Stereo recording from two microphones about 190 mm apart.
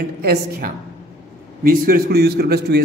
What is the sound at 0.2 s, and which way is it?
A man's voice, 55° right (ahead or behind).